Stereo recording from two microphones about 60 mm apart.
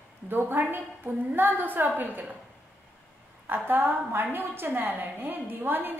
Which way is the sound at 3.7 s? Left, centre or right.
Right.